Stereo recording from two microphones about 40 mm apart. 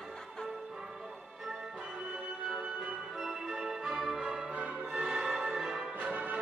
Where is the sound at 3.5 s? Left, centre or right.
Centre.